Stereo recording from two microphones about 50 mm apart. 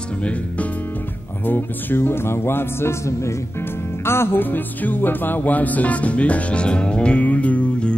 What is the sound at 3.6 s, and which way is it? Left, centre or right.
Music, left.